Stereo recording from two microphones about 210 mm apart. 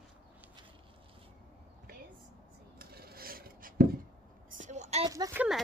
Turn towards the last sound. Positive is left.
turn(degrees=-15)  # may be behind; listen again after turning